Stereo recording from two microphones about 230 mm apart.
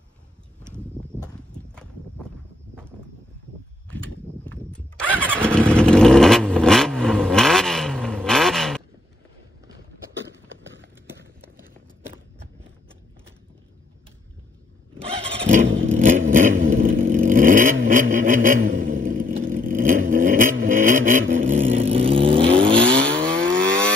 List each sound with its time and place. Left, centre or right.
4.5 s a sound: centre
5.4 s vehicle: centre
11.1 s walk: centre
15.0 s vehicle: right
20.6 s a sound: right
21.5 s vehicle: right
22.9 s vehicle: centre